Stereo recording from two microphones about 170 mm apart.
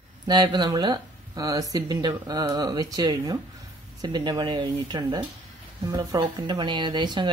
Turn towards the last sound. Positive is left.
turn(degrees=-25)  # may be behind; listen again after turning